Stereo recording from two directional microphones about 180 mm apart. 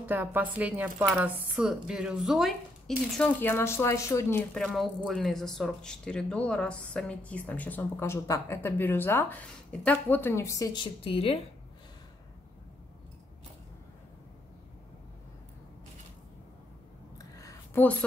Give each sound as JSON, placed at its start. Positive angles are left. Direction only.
{"t": 0.0, "sound": "speech", "side_deg": -10}
{"t": 4.6, "sound": "speech", "side_deg": 0}
{"t": 17.2, "sound": "a sound", "side_deg": 20}